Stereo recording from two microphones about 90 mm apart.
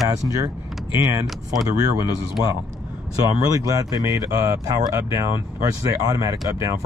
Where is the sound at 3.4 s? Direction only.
40° right (ahead or behind).